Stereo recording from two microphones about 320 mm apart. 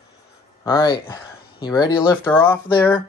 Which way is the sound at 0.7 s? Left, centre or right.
Centre.